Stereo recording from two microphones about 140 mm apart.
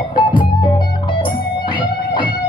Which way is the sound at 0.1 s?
35° left (ahead or behind).